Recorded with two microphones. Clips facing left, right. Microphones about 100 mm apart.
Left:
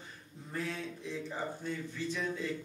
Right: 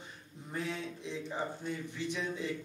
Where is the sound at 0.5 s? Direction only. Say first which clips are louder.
Even; 20° right (ahead or behind).